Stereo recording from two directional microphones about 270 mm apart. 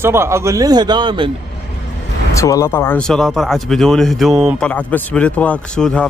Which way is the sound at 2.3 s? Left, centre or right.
Centre.